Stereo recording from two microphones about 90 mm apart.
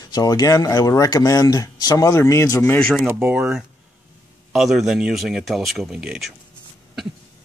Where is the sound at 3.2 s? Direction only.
5° right (ahead or behind).